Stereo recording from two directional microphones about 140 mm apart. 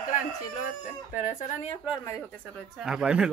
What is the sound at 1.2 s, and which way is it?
Speech, 60° left (ahead or behind).